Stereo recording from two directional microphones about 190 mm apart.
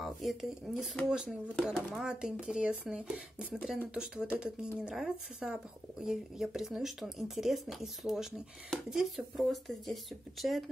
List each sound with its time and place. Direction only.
0.0 s speech: centre (ahead or behind)